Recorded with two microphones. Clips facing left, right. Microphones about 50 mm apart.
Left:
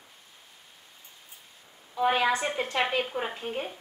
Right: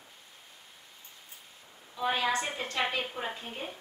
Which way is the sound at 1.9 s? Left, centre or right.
Left.